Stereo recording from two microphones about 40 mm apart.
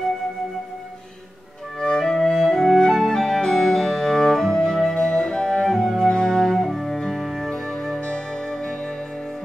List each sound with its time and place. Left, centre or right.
1.8 s music: centre
4.9 s flute: centre
5.6 s music: centre
6.0 s music: centre
7.4 s music: centre